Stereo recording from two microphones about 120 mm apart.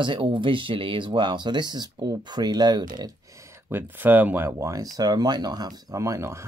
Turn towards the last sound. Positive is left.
turn(degrees=-25)  # may be behind; listen again after turning